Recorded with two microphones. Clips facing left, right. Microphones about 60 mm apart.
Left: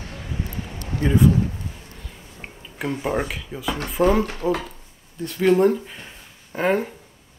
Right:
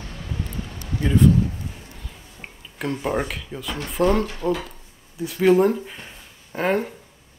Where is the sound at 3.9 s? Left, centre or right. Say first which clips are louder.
Left 1 dB; centre.